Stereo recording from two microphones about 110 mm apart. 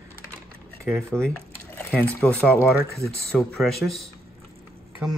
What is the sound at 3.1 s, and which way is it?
Speech, 5° left (ahead or behind).